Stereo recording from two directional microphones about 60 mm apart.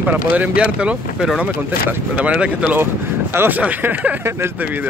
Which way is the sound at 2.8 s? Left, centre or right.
Right.